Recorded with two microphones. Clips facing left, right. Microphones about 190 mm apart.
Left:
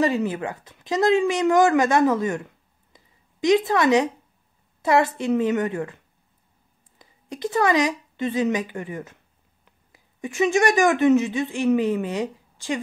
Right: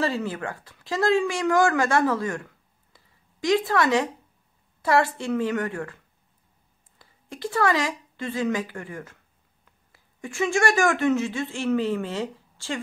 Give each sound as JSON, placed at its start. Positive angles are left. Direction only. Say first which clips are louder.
{"t": 0.0, "sound": "a woman's voice", "louder": "left 4 dB", "side_deg": 15}
{"t": 7.0, "sound": "a woman's voice", "louder": "left 4 dB", "side_deg": 20}